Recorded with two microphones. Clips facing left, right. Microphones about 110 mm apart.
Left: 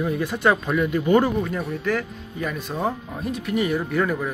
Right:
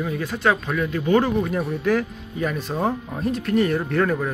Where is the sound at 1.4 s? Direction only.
5° right (ahead or behind).